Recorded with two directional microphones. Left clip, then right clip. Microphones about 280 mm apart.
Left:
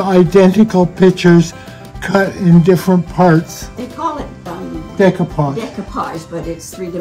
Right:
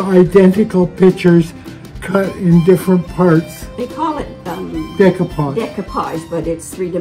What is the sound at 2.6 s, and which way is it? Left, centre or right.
Speech, left.